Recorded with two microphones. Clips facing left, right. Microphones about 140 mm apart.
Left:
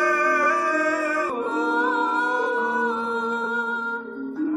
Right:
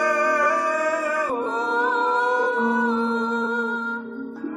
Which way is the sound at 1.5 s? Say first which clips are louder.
Left 3 dB; 5° left (ahead or behind).